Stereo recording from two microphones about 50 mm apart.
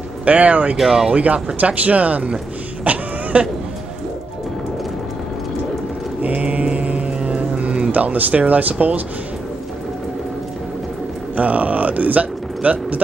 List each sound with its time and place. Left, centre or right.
0.2 s speech: right
0.7 s speech: centre
1.1 s speech: right
2.8 s vehicle: right
6.2 s mantra: right
11.3 s speech: right